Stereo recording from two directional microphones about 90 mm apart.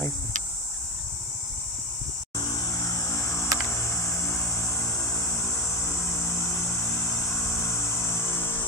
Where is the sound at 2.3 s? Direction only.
45° left (ahead or behind); by 3.4 s 30° left (ahead or behind).